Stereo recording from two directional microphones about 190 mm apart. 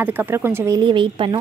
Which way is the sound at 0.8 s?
25° right (ahead or behind).